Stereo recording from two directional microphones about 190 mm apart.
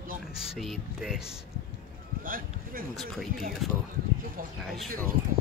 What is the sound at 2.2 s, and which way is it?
Speech, 50° right (ahead or behind).